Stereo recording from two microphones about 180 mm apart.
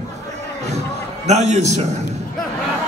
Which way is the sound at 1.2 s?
40° right (ahead or behind).